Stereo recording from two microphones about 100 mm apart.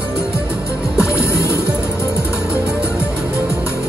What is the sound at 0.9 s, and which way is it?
Music, 10° right (ahead or behind).